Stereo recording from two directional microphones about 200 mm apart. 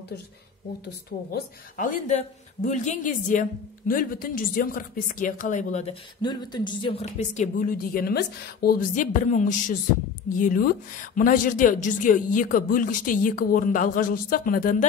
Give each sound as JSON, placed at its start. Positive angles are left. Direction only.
{"t": 1.3, "sound": "a woman's voice", "side_deg": 40}
{"t": 6.2, "sound": "a woman's voice", "side_deg": 20}